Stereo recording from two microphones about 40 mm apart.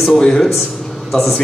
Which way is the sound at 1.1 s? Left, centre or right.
Centre.